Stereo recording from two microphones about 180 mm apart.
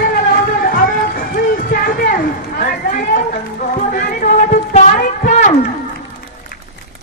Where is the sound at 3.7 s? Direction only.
45° left (ahead or behind).